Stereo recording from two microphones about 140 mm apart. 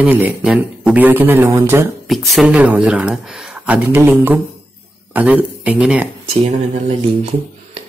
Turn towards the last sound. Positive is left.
turn(degrees=-50)  # may be behind; listen again after turning